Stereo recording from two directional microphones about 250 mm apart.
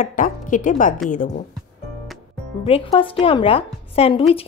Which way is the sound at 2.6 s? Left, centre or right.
Left.